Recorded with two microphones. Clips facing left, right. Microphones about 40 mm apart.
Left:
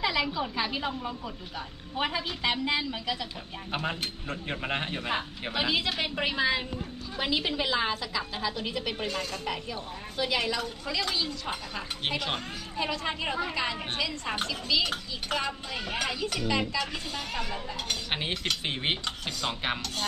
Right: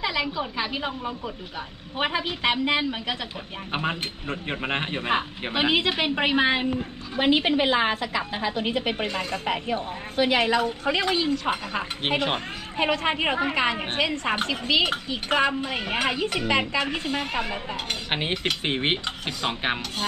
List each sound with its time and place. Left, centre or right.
0.0 s a woman's voice: centre
2.0 s speech: right
3.7 s speech: right